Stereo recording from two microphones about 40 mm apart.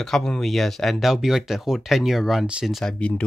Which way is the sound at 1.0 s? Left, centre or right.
Centre.